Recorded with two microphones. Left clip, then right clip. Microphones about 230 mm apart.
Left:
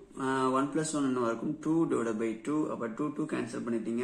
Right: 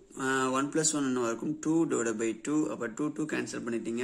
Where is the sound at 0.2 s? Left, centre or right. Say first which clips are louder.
Even; right.